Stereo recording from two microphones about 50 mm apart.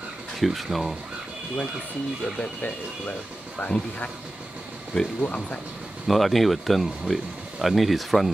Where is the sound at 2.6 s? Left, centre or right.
Left.